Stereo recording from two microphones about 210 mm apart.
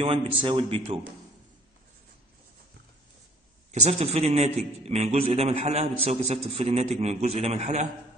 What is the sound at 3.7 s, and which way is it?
A man's voice, 30° right (ahead or behind).